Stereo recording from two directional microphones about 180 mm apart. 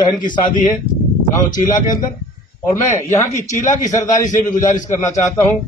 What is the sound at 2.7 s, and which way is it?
Speech, 20° left (ahead or behind).